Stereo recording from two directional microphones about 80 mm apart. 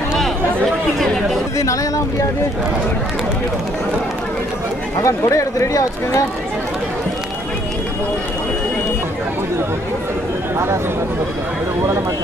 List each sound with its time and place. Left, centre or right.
0.9 s chatter: centre
5.0 s speech: left